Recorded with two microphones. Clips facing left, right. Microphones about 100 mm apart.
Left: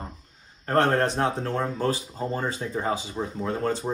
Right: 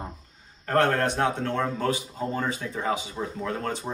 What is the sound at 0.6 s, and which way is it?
Speech, 30° left (ahead or behind).